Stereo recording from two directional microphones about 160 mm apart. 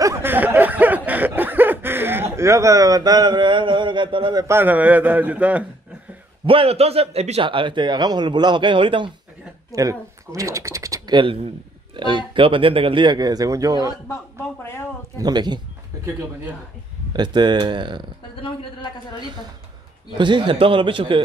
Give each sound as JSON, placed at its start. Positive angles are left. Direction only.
{"t": 0.0, "sound": "a sound", "side_deg": -15}
{"t": 6.4, "sound": "a man's voice", "side_deg": -35}
{"t": 9.7, "sound": "speech", "side_deg": -20}
{"t": 13.8, "sound": "a man's voice", "side_deg": 20}
{"t": 15.1, "sound": "speech", "side_deg": -25}
{"t": 17.1, "sound": "speech", "side_deg": -30}
{"t": 18.3, "sound": "speech", "side_deg": 30}
{"t": 20.2, "sound": "a man's voice", "side_deg": -30}